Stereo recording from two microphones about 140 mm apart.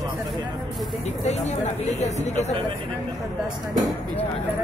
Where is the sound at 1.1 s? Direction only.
55° left (ahead or behind).